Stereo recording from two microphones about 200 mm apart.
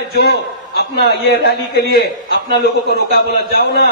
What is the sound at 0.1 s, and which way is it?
A man's voice, 55° left (ahead or behind).